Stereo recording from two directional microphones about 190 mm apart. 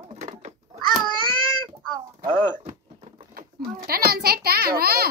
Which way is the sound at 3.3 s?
50° right (ahead or behind).